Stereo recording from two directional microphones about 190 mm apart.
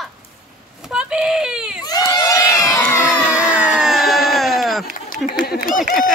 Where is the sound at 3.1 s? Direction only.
5° right (ahead or behind).